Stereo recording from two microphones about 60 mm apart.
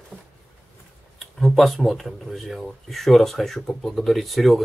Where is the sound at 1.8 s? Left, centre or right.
Centre.